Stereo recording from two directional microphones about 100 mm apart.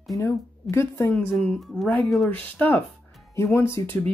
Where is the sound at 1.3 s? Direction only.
5° left (ahead or behind).